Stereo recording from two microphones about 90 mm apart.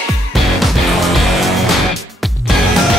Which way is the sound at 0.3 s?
Centre (ahead or behind).